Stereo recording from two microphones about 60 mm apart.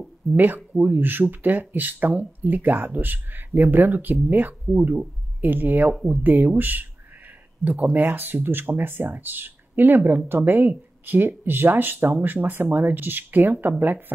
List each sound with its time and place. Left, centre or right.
0.7 s speech: right